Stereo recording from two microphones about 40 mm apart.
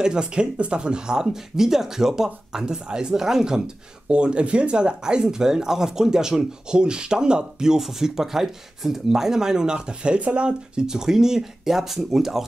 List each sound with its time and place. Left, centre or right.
0.0 s speech: right
10.9 s speech: centre